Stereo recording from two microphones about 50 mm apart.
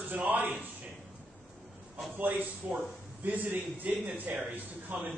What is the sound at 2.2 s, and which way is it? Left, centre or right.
A man's voice, right.